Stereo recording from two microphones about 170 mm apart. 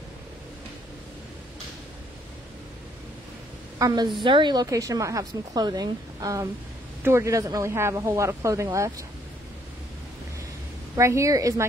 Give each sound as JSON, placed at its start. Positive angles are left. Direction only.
{"t": 3.7, "sound": "a woman's voice", "side_deg": -25}
{"t": 11.0, "sound": "speech", "side_deg": -15}